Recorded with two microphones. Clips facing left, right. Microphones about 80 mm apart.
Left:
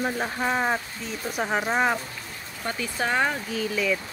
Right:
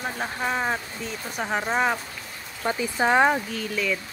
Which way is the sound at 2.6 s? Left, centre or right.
Centre.